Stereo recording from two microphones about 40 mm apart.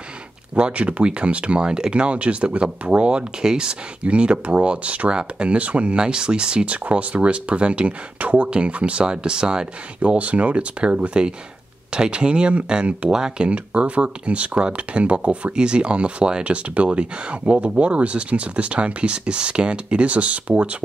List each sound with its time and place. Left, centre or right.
0.6 s speech: right
10.1 s speech: right; by 13.5 s centre
13.5 s speech: right